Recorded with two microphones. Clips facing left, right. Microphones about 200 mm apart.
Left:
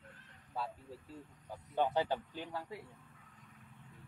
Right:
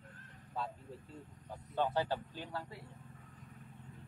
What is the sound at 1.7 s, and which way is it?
A man's voice, 15° left (ahead or behind).